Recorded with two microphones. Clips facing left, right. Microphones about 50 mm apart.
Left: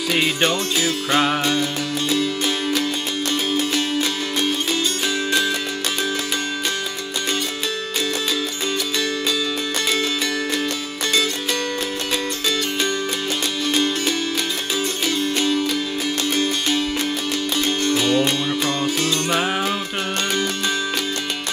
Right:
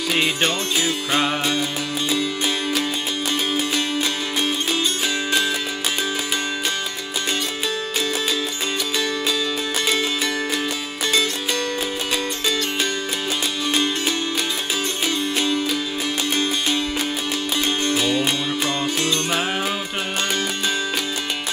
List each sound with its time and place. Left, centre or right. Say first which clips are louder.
0.1 s music: left 2 dB; centre
13.7 s music: left 1 dB; centre